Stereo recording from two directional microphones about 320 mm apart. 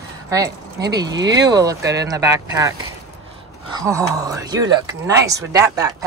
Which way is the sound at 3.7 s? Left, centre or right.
Centre.